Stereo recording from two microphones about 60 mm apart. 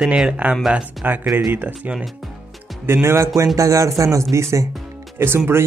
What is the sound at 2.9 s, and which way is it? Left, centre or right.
Speech, right.